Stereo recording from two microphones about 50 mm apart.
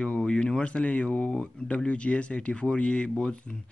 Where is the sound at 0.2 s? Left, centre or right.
Centre.